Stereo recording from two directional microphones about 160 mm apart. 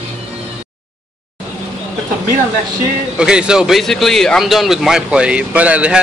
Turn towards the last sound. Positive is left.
turn(degrees=-10)  # may be behind; listen again after turning